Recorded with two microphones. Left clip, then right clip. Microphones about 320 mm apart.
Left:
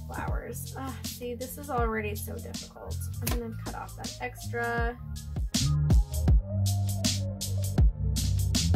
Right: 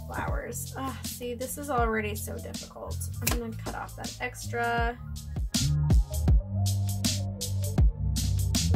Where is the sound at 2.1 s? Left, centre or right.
Centre.